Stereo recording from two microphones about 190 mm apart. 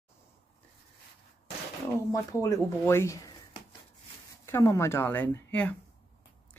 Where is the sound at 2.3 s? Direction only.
15° left (ahead or behind).